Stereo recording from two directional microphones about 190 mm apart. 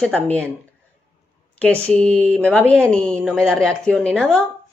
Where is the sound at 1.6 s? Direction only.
5° left (ahead or behind).